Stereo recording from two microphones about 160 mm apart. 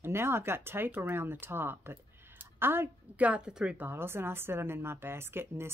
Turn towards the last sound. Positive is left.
turn(degrees=-15)  # may be behind; listen again after turning